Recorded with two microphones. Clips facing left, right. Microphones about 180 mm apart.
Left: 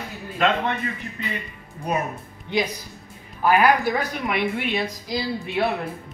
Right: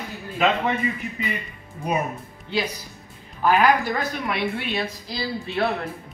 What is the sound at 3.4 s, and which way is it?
A woman's voice, 10° left (ahead or behind).